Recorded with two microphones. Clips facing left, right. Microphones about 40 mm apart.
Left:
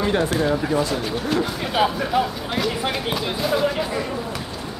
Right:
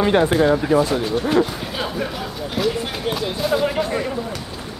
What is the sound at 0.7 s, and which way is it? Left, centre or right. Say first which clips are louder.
Speech: right 6 dB; centre.